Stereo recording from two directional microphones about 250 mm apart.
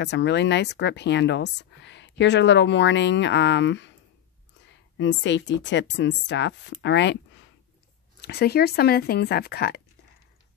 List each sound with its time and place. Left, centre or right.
0.0 s speech: left
4.9 s speech: left
8.2 s speech: left